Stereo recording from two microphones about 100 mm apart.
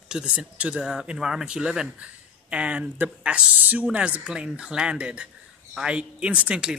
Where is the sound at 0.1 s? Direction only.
5° right (ahead or behind).